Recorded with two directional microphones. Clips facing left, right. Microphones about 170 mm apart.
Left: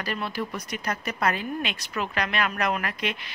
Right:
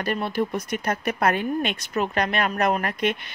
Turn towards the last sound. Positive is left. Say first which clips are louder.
# right 5 dB
turn(degrees=-45)  # may be behind; listen again after turning